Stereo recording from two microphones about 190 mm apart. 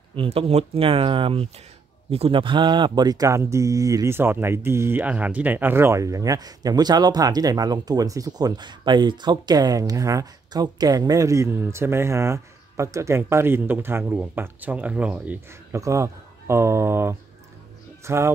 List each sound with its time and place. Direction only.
0.1 s speech: 30° right (ahead or behind)